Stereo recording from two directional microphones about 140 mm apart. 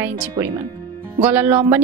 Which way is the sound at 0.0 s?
15° right (ahead or behind).